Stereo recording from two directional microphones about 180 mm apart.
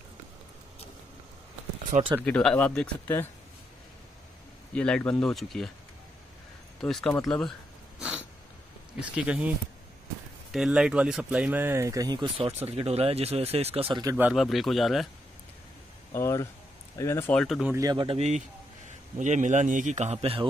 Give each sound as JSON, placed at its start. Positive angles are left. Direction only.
{"t": 1.9, "sound": "a man's voice", "side_deg": -45}
{"t": 2.2, "sound": "speech", "side_deg": 5}
{"t": 4.7, "sound": "speech", "side_deg": 5}
{"t": 6.8, "sound": "speech", "side_deg": 0}
{"t": 8.0, "sound": "a sound", "side_deg": -5}
{"t": 9.1, "sound": "speech", "side_deg": -5}
{"t": 10.5, "sound": "speech", "side_deg": -5}
{"t": 14.1, "sound": "speech", "side_deg": -5}
{"t": 16.1, "sound": "speech", "side_deg": 15}
{"t": 17.7, "sound": "a man's voice", "side_deg": -25}